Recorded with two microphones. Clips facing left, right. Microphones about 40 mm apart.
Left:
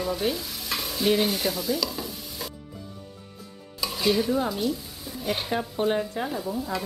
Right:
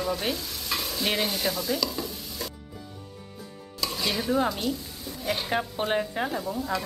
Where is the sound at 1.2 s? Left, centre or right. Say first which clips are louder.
Left 2 dB; centre.